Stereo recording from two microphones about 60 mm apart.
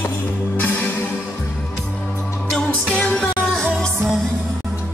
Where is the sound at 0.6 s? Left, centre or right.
Left.